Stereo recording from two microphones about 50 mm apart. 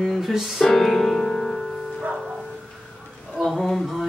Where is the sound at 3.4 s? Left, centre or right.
Centre.